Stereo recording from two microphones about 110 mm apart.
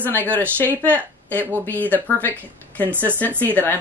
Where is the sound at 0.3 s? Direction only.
15° left (ahead or behind).